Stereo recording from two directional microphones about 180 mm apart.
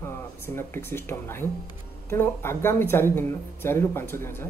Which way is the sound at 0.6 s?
10° left (ahead or behind).